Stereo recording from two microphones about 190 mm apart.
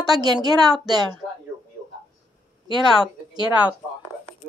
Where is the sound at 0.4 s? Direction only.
20° right (ahead or behind).